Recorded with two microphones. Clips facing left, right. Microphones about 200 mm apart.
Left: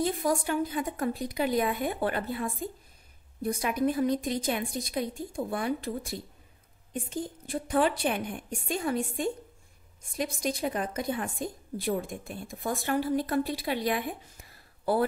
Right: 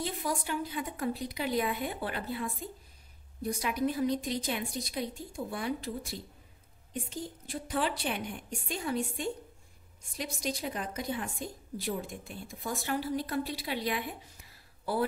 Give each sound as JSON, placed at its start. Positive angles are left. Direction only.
{"t": 0.0, "sound": "a woman's voice", "side_deg": 50}